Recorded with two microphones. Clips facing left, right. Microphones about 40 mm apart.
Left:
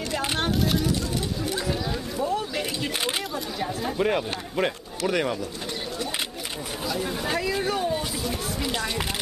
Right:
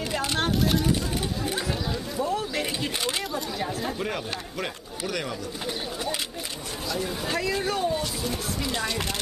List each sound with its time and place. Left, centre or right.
0.4 s a sound: centre
1.9 s chatter: centre
3.3 s speech: centre
4.0 s speech: centre
6.9 s speech: centre
8.2 s chopping: centre